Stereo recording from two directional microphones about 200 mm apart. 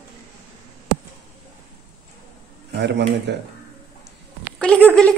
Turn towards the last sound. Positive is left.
turn(degrees=10)  # may be behind; listen again after turning